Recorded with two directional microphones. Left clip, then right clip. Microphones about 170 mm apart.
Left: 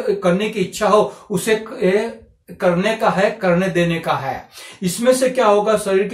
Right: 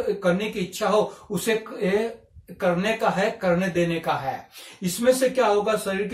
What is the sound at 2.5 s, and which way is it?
Speech, centre (ahead or behind).